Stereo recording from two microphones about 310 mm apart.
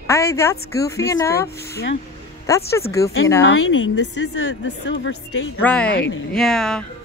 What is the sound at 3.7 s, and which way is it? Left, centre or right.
Speech, left.